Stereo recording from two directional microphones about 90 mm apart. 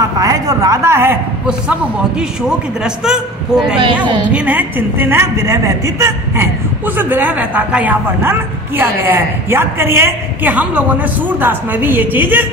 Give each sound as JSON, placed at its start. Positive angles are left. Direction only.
{"t": 0.2, "sound": "a woman's voice", "side_deg": -40}
{"t": 1.7, "sound": "a man's voice", "side_deg": -10}
{"t": 4.3, "sound": "a woman's voice", "side_deg": -15}